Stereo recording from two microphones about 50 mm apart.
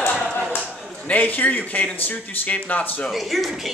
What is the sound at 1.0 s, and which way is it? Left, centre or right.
Speech, left.